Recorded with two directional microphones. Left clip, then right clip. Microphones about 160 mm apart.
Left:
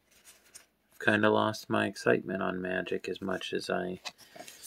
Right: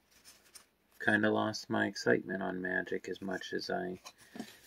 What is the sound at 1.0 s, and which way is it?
Speech, 40° left (ahead or behind).